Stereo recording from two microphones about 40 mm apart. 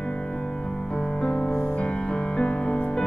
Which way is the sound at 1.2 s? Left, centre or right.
Centre.